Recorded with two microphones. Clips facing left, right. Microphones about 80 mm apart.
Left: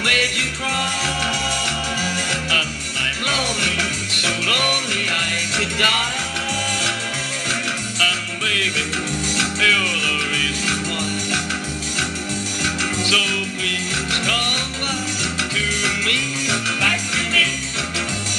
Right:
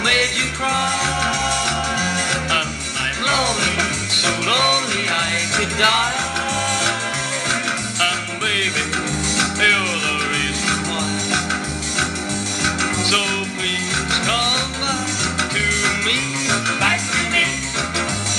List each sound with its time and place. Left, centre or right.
0.0 s music: right
8.0 s music: right
12.6 s music: right